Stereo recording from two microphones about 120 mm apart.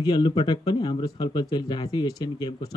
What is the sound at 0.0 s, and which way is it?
Speech, 45° left (ahead or behind).